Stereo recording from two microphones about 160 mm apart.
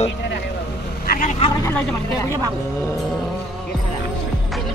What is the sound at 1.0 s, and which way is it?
Vehicle, 55° left (ahead or behind).